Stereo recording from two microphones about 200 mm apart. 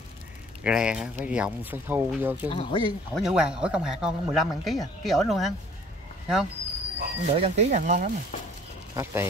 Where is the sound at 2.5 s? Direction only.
25° left (ahead or behind).